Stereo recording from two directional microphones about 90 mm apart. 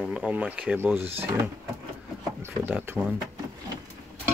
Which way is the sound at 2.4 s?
20° right (ahead or behind).